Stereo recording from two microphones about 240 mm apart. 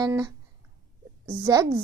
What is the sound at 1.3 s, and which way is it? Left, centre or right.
Speech, centre.